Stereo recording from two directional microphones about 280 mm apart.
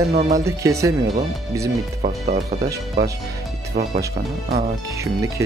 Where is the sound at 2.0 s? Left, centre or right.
Right.